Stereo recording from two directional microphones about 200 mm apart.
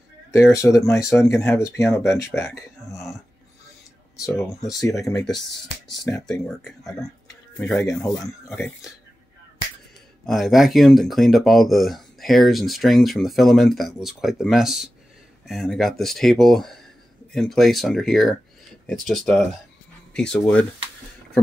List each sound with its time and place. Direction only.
0.5 s speech: 15° left (ahead or behind)
4.7 s speech: 15° left (ahead or behind)
6.1 s speech: 5° left (ahead or behind)
10.2 s speech: centre (ahead or behind)